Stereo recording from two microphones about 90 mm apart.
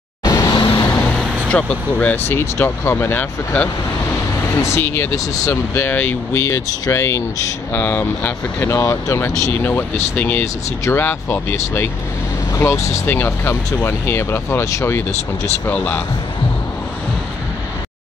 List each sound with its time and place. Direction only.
0.2 s vehicle: 40° left (ahead or behind)
0.6 s vehicle: 60° left (ahead or behind)
1.5 s speech: 15° left (ahead or behind)
5.1 s speech: 40° left (ahead or behind)
5.8 s speech: 20° left (ahead or behind)
6.4 s speech: 35° left (ahead or behind)
7.7 s speech: 20° left (ahead or behind)
8.6 s speech: 35° left (ahead or behind)
15.6 s speech: 20° left (ahead or behind)